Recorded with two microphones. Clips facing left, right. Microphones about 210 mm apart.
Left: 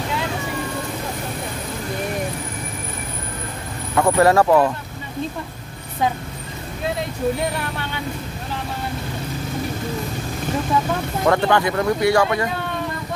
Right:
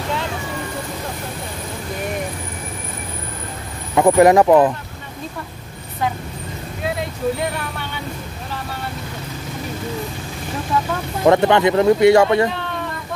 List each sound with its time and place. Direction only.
3.9 s speech: 15° right (ahead or behind)
11.2 s speech: 20° right (ahead or behind)